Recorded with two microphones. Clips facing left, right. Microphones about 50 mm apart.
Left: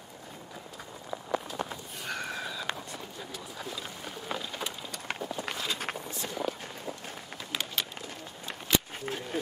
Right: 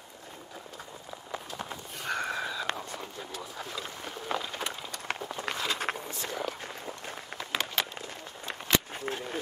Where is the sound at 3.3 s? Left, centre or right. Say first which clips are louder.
Even; centre.